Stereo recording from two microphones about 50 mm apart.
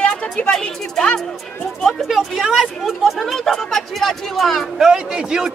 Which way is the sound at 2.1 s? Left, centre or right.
Centre.